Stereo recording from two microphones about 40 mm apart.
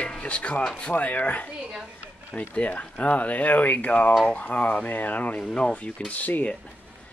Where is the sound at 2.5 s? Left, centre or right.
Left.